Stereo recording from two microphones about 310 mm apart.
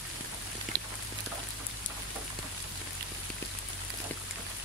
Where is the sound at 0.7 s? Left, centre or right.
Right.